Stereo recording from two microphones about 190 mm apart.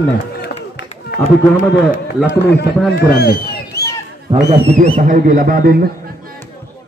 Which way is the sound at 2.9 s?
55° left (ahead or behind).